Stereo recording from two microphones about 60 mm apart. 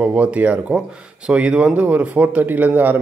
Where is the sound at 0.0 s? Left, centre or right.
Right.